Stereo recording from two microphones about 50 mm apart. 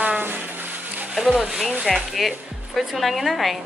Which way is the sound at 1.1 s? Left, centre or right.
Centre.